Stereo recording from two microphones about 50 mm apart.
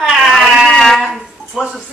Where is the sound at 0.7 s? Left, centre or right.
Centre.